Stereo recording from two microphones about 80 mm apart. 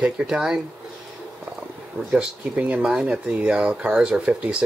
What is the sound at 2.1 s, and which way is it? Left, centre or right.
Speech, centre.